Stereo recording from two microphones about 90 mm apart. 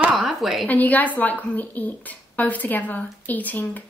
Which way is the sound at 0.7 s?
20° left (ahead or behind).